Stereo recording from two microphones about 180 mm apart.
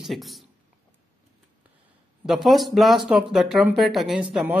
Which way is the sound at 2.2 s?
Centre (ahead or behind).